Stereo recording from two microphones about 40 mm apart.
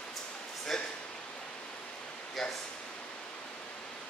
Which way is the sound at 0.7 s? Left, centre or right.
Centre.